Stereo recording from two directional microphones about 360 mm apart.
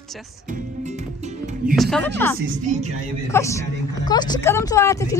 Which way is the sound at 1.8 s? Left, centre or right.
Centre.